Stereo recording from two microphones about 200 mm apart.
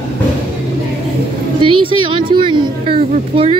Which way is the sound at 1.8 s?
25° right (ahead or behind).